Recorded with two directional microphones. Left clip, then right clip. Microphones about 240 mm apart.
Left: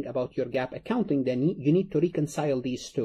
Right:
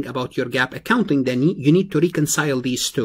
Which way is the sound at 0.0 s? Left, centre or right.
Right.